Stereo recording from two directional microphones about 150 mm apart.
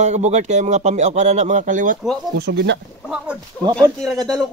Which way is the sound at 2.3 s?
90° right.